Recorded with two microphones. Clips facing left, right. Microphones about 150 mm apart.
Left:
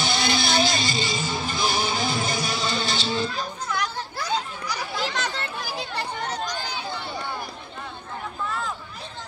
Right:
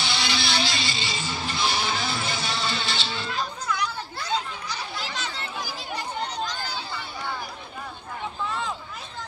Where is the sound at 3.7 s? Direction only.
70° left (ahead or behind).